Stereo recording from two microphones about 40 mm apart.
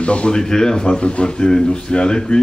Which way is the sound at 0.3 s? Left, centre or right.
Centre.